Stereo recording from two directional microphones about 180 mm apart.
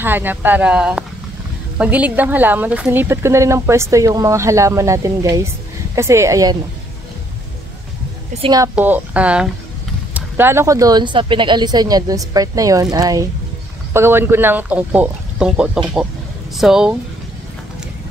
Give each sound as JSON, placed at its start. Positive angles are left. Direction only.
{"t": 0.0, "sound": "speech", "side_deg": -10}
{"t": 8.4, "sound": "speech", "side_deg": -25}
{"t": 8.7, "sound": "speech", "side_deg": -10}